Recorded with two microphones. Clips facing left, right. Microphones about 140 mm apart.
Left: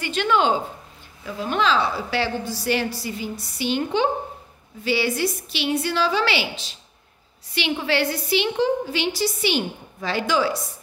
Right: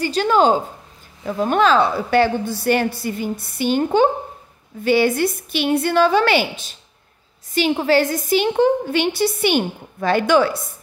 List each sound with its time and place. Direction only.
0.0 s a woman's voice: 40° right (ahead or behind); by 10.6 s 55° right (ahead or behind)